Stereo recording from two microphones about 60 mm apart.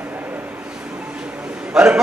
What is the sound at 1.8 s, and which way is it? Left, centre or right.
Speech, centre.